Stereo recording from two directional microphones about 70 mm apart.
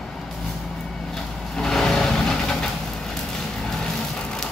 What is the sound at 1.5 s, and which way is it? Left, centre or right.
Vehicle, centre.